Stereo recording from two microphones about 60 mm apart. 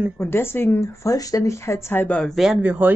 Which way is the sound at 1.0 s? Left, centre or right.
Left.